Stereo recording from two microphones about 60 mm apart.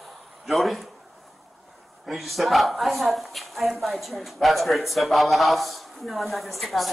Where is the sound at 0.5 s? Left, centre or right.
Centre.